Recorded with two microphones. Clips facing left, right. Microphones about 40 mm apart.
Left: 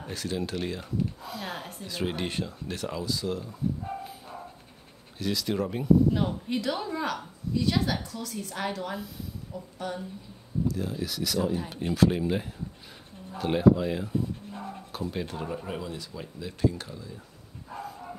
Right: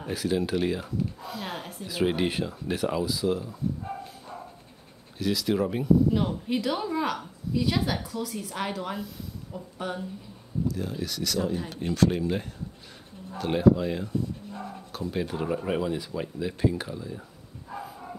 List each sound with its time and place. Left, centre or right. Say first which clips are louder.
0.0 s speech: right 5 dB; centre
5.2 s speech: right 3 dB; centre
9.5 s speech: right 2 dB; centre
10.7 s speech: even; centre
15.6 s speech: right 7 dB; right